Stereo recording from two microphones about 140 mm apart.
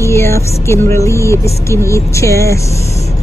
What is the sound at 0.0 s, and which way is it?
Music, 20° left (ahead or behind).